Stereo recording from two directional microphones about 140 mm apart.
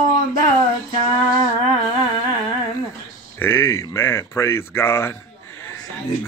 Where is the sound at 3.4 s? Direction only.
15° left (ahead or behind).